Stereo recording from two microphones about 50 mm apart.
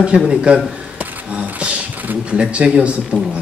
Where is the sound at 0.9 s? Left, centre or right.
Right.